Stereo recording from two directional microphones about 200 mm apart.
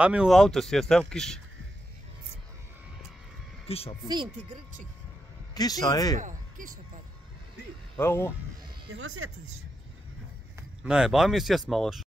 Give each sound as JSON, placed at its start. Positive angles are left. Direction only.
{"t": 0.0, "sound": "speech", "side_deg": -5}
{"t": 3.6, "sound": "speech", "side_deg": 30}
{"t": 5.5, "sound": "speech", "side_deg": 20}
{"t": 6.1, "sound": "speech", "side_deg": -40}
{"t": 8.0, "sound": "speech", "side_deg": 10}
{"t": 8.9, "sound": "speech", "side_deg": -90}
{"t": 10.8, "sound": "speech", "side_deg": -5}